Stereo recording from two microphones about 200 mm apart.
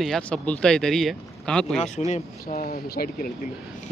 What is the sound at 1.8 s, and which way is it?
Speech, 35° left (ahead or behind).